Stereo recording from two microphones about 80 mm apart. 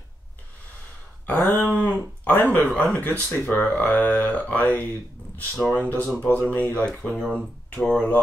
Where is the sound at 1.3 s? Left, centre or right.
Centre.